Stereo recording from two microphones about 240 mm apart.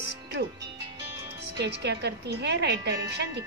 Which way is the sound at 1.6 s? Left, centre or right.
Right.